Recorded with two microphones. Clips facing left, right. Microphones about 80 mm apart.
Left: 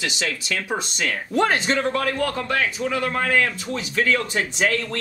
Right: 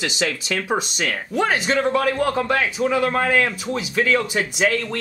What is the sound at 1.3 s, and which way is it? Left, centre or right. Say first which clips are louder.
Speech: even; centre.